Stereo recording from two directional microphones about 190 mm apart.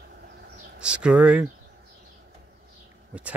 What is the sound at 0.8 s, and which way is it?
Speech, 5° right (ahead or behind).